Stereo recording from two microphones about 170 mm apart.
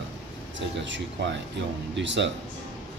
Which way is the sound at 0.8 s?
90° right.